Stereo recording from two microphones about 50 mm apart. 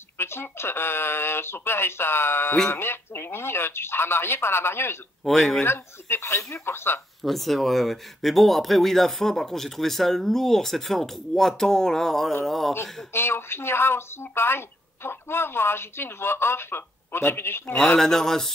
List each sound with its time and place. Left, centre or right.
0.2 s speech: left
5.2 s a man's voice: centre
5.6 s speech: left
7.2 s speech: centre
13.1 s speech: left
17.9 s a man's voice: centre